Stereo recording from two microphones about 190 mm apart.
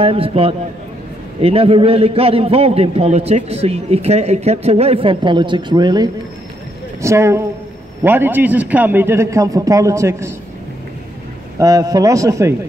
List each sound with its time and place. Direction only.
0.0 s a man's voice: 30° right (ahead or behind)
11.5 s a man's voice: 20° right (ahead or behind)